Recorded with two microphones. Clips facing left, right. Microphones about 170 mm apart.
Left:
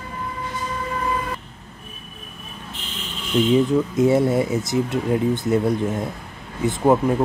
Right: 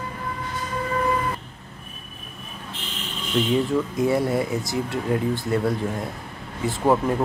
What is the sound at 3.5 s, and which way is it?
Speech, 20° left (ahead or behind).